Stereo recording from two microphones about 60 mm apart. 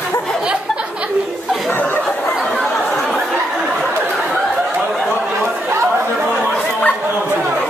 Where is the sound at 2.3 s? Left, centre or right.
Centre.